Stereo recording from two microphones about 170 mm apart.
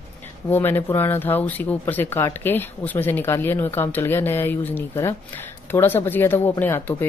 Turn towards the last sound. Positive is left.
turn(degrees=10)  # may be behind; listen again after turning